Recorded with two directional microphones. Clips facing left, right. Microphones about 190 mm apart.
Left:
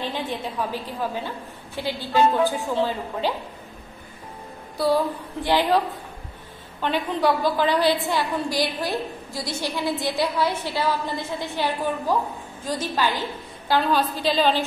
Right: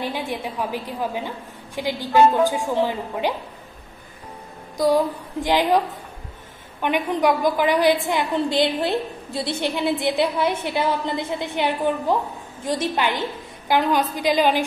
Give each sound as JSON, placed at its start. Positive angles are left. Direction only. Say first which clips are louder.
{"t": 0.0, "sound": "a woman's voice", "louder": "right 1 dB", "side_deg": -10}
{"t": 4.7, "sound": "a woman's voice", "louder": "right 3 dB", "side_deg": -15}
{"t": 6.8, "sound": "a woman's voice", "louder": "right 2 dB", "side_deg": -15}
{"t": 10.0, "sound": "a woman's voice", "louder": "right 2 dB", "side_deg": -20}